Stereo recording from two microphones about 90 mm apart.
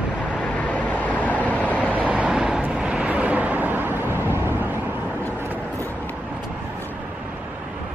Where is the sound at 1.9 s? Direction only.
15° right (ahead or behind).